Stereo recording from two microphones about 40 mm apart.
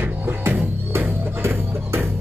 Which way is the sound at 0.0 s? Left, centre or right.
Right.